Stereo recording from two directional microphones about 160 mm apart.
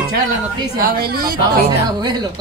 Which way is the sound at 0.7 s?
70° right (ahead or behind).